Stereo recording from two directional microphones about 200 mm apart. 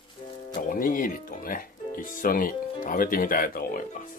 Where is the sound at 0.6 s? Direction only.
45° left (ahead or behind).